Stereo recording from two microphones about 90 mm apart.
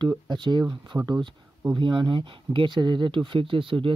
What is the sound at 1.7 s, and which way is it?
Speech, 60° right (ahead or behind).